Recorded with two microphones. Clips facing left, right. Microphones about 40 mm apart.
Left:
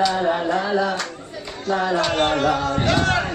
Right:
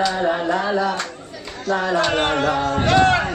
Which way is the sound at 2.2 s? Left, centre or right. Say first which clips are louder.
Even; right.